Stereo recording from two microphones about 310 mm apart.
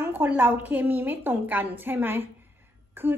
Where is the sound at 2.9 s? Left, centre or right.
Centre.